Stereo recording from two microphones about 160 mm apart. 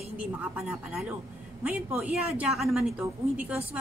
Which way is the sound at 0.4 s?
5° right (ahead or behind).